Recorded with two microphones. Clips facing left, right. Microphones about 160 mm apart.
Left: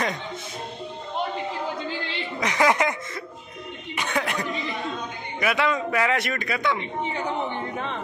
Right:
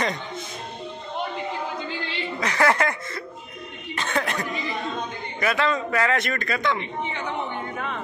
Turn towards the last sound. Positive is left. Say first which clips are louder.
# right 1 dB
turn(degrees=10)  # may be behind; listen again after turning